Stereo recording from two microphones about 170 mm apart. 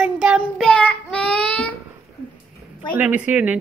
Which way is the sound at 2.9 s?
10° right (ahead or behind).